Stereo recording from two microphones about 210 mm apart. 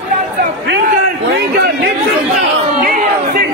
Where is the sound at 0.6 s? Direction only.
55° right (ahead or behind).